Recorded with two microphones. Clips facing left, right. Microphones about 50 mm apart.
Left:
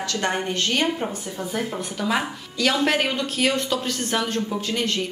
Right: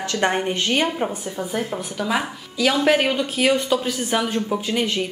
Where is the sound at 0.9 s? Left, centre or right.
Centre.